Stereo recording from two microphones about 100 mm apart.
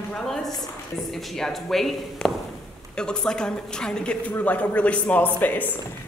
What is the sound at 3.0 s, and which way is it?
A woman's voice, 10° left (ahead or behind).